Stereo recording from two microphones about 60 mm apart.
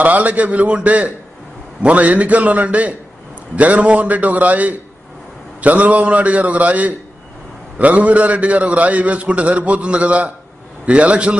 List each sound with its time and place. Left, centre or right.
0.0 s a man's voice: right